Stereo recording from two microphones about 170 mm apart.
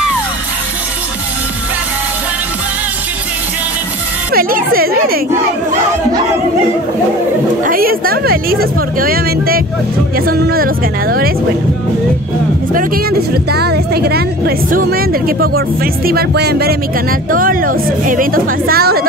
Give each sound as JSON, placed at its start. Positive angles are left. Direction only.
{"t": 4.3, "sound": "a woman's voice", "side_deg": -60}
{"t": 7.6, "sound": "a woman's voice", "side_deg": -60}
{"t": 12.7, "sound": "a woman's voice", "side_deg": -60}
{"t": 17.3, "sound": "a woman's voice", "side_deg": -55}